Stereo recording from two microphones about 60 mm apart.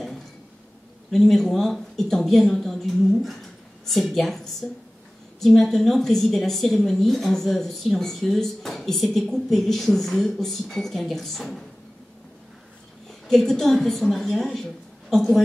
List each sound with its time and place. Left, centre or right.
1.1 s speech: centre
13.3 s speech: centre